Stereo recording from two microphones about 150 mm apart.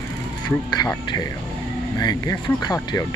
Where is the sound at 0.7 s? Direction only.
25° left (ahead or behind).